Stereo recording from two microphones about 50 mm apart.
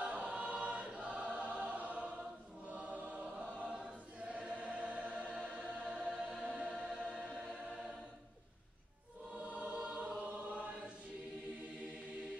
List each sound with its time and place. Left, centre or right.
0.0 s choir: right
5.5 s music: right
9.3 s choir: right